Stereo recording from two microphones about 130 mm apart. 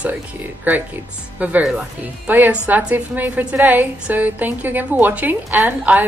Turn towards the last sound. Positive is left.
turn(degrees=-15)  # may be behind; listen again after turning